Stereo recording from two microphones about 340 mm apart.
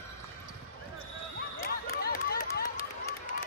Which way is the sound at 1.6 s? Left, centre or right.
Left.